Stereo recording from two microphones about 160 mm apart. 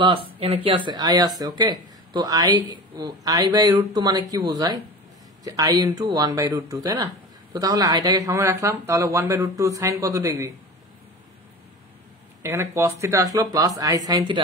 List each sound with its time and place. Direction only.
0.0 s speech: 35° right (ahead or behind)
12.4 s speech: 15° right (ahead or behind)